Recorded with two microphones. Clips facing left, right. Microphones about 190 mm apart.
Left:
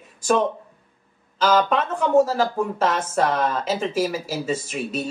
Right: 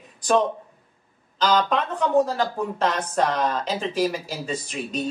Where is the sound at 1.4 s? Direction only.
5° left (ahead or behind).